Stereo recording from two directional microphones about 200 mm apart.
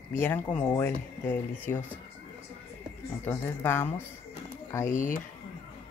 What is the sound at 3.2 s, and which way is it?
Speech, 10° left (ahead or behind).